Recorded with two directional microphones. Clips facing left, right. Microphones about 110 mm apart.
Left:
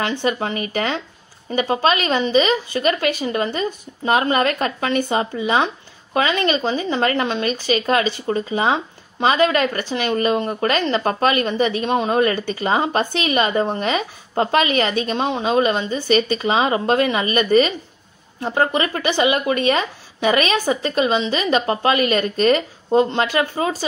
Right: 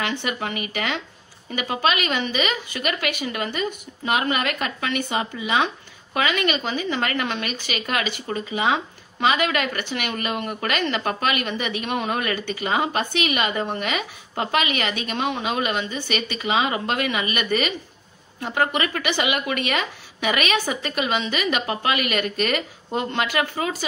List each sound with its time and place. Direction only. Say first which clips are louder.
0.0 s speech: left 5 dB; 35° left (ahead or behind)